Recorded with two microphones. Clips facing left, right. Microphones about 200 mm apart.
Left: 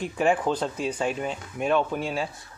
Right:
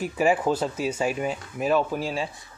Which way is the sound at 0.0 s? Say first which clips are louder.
Right 1 dB; 5° right (ahead or behind).